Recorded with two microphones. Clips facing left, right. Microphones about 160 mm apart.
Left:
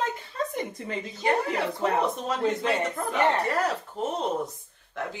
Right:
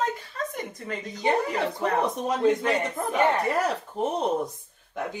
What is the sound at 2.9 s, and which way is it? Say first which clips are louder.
Speech: right 1 dB; 20° right (ahead or behind).